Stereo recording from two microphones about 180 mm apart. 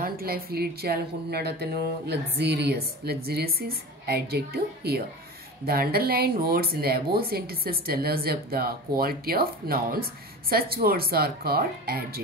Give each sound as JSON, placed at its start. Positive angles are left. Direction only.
{"t": 0.0, "sound": "speech", "side_deg": -55}